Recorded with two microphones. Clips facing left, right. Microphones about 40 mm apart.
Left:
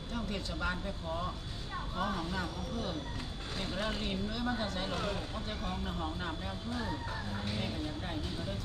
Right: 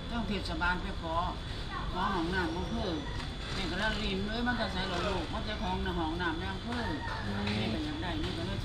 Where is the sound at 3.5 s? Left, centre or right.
Right.